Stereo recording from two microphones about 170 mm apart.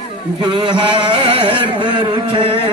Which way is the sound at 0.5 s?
30° right (ahead or behind).